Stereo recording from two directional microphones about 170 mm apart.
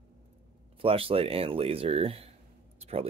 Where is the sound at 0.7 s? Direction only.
35° right (ahead or behind).